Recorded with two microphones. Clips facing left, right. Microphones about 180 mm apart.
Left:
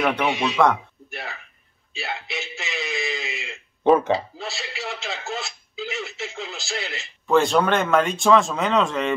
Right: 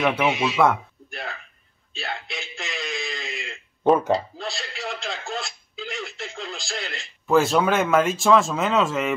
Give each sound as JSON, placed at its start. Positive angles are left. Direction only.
{"t": 0.0, "sound": "a man's voice", "side_deg": 0}